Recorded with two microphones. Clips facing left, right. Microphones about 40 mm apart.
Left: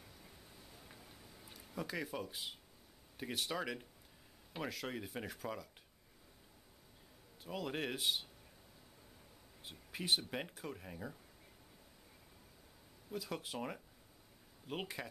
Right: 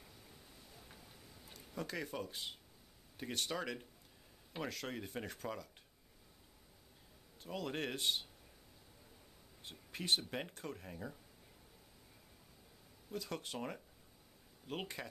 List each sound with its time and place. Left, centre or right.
0.7 s a sound: centre
3.2 s speech: centre
7.4 s speech: centre
9.7 s speech: centre
13.1 s speech: centre